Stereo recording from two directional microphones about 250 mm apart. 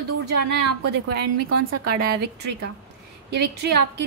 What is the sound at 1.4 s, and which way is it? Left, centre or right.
Speech, right.